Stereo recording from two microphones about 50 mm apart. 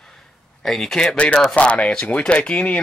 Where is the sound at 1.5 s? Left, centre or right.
Left.